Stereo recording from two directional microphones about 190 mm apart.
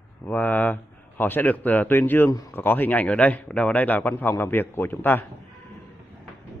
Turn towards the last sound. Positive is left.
turn(degrees=10)  # may be behind; listen again after turning